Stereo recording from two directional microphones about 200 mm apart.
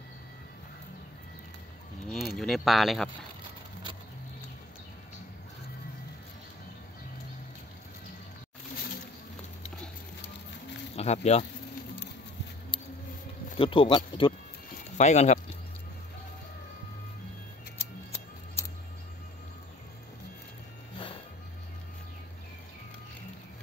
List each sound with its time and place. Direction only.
2.0 s speech: centre (ahead or behind)
11.0 s speech: 30° left (ahead or behind)
13.6 s speech: 25° left (ahead or behind)
15.0 s speech: 35° left (ahead or behind)